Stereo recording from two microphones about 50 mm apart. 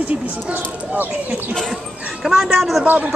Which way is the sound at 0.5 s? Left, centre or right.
Right.